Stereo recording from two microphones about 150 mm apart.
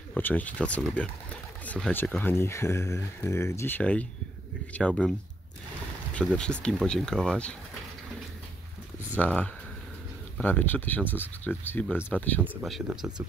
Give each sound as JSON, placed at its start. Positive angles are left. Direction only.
{"t": 0.1, "sound": "speech", "side_deg": 10}
{"t": 6.3, "sound": "speech", "side_deg": 5}
{"t": 9.2, "sound": "speech", "side_deg": 10}
{"t": 12.8, "sound": "speech", "side_deg": -5}